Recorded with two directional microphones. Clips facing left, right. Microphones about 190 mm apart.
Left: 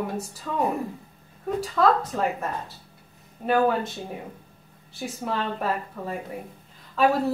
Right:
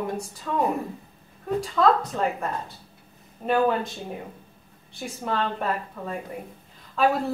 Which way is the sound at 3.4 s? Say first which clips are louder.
Even; centre (ahead or behind).